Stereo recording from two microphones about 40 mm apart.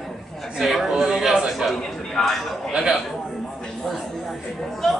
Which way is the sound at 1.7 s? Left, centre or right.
Centre.